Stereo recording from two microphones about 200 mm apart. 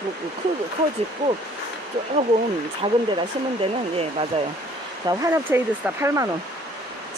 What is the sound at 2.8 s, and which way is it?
Speech, 25° right (ahead or behind).